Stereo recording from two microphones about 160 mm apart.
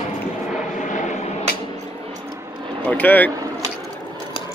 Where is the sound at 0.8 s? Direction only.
50° left (ahead or behind).